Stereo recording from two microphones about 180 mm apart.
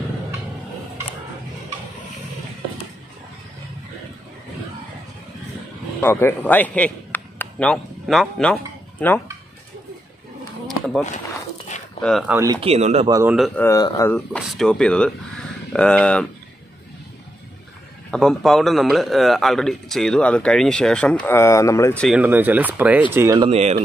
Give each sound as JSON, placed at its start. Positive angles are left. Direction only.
{"t": 5.9, "sound": "a man's voice", "side_deg": 10}
{"t": 12.0, "sound": "speech", "side_deg": 0}
{"t": 12.5, "sound": "speech", "side_deg": -35}
{"t": 13.1, "sound": "speech", "side_deg": -15}
{"t": 13.6, "sound": "speech", "side_deg": 20}
{"t": 18.1, "sound": "speech", "side_deg": 0}
{"t": 22.0, "sound": "speech", "side_deg": -5}
{"t": 23.5, "sound": "speech", "side_deg": -35}